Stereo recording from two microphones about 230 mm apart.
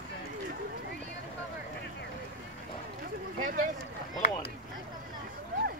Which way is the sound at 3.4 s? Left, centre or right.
Right.